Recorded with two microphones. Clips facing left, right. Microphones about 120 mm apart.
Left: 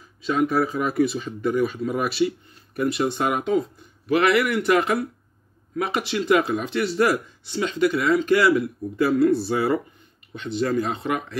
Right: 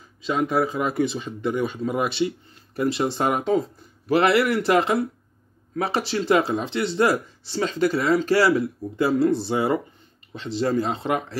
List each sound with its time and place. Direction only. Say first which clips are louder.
0.2 s speech: left 1 dB; 25° right (ahead or behind)